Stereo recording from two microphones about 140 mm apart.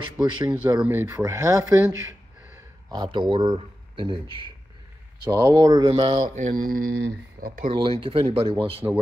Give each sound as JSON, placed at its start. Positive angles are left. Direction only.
{"t": 0.0, "sound": "speech", "side_deg": -35}
{"t": 0.7, "sound": "speech", "side_deg": -15}
{"t": 5.2, "sound": "speech", "side_deg": -25}
{"t": 5.9, "sound": "speech", "side_deg": -40}
{"t": 6.2, "sound": "speech", "side_deg": -60}
{"t": 7.7, "sound": "speech", "side_deg": -40}